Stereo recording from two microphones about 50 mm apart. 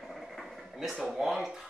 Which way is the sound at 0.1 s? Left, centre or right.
Centre.